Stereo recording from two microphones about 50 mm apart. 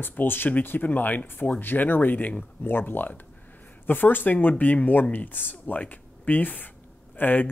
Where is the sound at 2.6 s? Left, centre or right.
Left.